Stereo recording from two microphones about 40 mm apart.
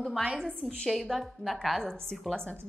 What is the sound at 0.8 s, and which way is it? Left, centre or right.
A woman's voice, centre.